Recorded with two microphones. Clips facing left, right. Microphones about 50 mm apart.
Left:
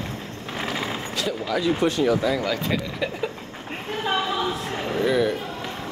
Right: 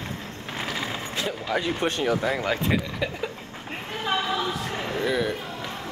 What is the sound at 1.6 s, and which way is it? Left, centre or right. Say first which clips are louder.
Speech: left 7 dB; right.